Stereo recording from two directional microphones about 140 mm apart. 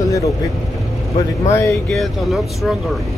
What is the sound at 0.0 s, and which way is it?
Vehicle, 25° left (ahead or behind).